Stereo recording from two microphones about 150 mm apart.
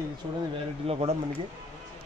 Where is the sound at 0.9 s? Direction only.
40° right (ahead or behind).